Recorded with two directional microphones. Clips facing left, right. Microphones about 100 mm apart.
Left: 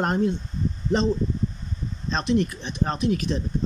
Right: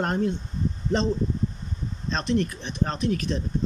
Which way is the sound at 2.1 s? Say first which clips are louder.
Left 2 dB; 15° left (ahead or behind).